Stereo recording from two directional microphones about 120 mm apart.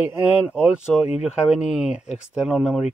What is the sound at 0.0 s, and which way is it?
Speech, 10° right (ahead or behind).